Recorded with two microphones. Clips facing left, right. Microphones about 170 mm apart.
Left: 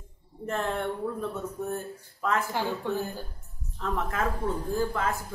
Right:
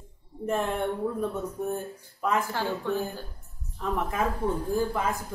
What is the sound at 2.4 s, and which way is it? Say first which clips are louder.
Speech: even; 15° left (ahead or behind).